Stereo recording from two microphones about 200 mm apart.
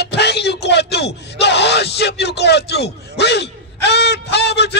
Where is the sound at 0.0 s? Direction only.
55° left (ahead or behind).